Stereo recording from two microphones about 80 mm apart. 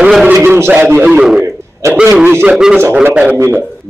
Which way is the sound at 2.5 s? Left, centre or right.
Centre.